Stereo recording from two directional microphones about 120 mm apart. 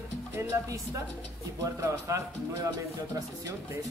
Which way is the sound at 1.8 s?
25° right (ahead or behind).